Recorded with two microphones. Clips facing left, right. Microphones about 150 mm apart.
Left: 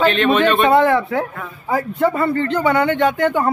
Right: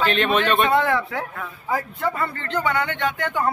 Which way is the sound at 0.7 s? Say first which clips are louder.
Left 6 dB; 35° left (ahead or behind).